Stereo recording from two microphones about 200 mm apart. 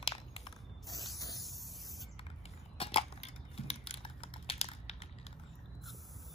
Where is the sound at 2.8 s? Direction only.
30° left (ahead or behind).